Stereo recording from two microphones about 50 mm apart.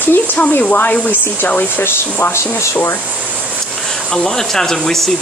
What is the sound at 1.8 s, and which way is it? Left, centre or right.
Speech, left.